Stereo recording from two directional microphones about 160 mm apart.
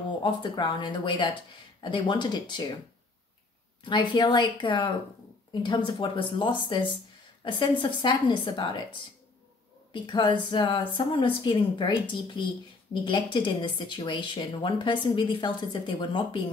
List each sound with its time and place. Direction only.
0.2 s speech: 30° left (ahead or behind)
3.8 s speech: 30° left (ahead or behind)
9.9 s speech: 30° left (ahead or behind)